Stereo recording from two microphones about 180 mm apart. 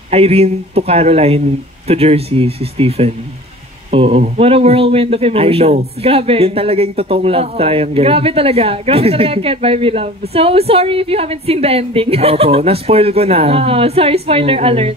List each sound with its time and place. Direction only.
0.1 s speech: 35° right (ahead or behind)